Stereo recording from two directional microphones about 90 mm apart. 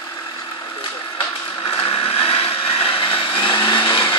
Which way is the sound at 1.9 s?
90° left.